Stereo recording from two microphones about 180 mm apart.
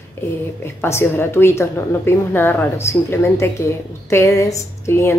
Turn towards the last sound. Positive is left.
turn(degrees=15)  # may be behind; listen again after turning